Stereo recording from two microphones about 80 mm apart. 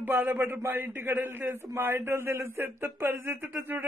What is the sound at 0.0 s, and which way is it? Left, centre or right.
Speech, right.